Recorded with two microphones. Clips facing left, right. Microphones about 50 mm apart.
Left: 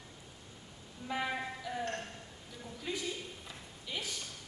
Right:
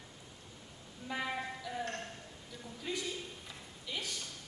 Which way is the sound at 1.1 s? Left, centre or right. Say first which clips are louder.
Left 2 dB; centre.